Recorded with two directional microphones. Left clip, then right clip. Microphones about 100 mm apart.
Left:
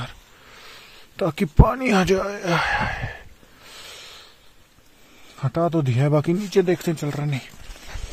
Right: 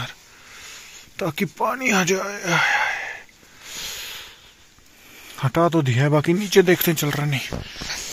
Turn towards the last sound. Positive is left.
turn(degrees=10)  # may be behind; listen again after turning